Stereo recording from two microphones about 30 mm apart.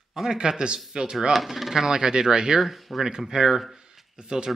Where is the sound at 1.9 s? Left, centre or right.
Right.